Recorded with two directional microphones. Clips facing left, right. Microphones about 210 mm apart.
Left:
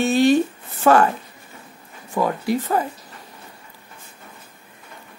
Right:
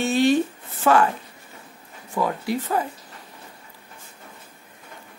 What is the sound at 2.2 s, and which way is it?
Speech, 50° left (ahead or behind).